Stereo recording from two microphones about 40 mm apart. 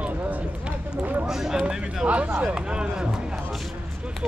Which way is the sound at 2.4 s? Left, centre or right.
Right.